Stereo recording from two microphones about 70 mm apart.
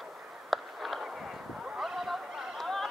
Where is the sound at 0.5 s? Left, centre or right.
Centre.